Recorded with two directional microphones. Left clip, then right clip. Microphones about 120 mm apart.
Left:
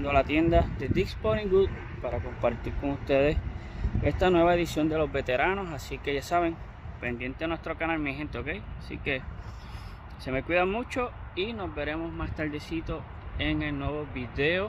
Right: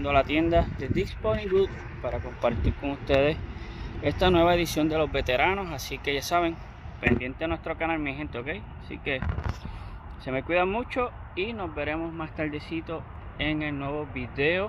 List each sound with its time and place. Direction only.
0.0 s speech: 20° left (ahead or behind); by 6.5 s centre (ahead or behind)
7.2 s speech: 20° left (ahead or behind)
10.2 s speech: 20° left (ahead or behind)